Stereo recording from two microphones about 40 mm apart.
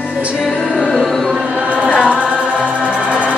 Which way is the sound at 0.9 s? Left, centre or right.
Centre.